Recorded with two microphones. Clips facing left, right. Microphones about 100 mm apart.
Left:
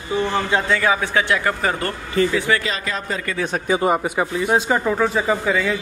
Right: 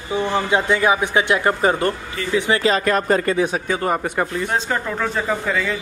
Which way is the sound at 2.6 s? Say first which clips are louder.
Right 8 dB; 50° right (ahead or behind).